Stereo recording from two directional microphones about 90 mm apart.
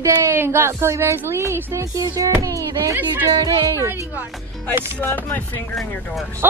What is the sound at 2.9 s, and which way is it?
A woman's voice, 25° right (ahead or behind).